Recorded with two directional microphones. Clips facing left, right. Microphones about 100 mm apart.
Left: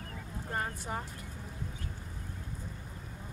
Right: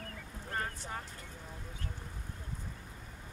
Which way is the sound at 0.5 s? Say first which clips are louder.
Left 3 dB; 20° left (ahead or behind).